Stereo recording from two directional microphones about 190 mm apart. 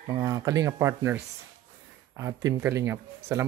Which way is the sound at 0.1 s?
20° right (ahead or behind).